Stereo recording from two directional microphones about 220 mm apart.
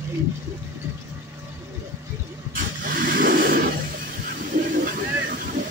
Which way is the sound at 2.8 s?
40° right (ahead or behind).